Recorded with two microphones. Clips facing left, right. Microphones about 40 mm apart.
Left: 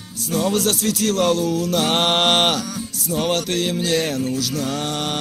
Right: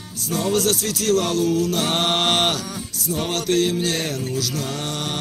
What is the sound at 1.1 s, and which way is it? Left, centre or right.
Music, left.